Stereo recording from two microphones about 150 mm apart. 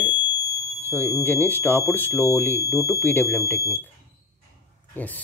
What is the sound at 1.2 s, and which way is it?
Speech, 10° left (ahead or behind).